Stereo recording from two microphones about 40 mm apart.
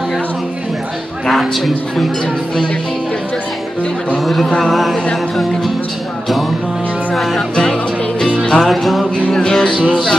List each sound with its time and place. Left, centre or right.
4.2 s a sound: centre
4.6 s a man's voice: centre
8.6 s music: centre
9.3 s music: centre